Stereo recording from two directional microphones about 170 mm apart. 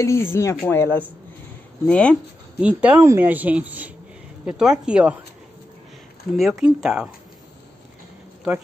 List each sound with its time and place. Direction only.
0.0 s speech: 15° left (ahead or behind)
2.6 s speech: 5° right (ahead or behind)
6.3 s speech: centre (ahead or behind)